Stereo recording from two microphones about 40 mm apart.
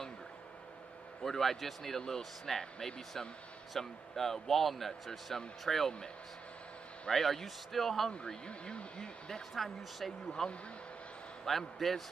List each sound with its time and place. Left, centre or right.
1.2 s speech: centre
7.1 s speech: centre
8.5 s speech: left
9.3 s speech: centre